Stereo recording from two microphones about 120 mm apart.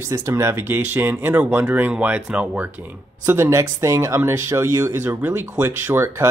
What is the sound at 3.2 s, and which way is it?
Speech, 20° right (ahead or behind).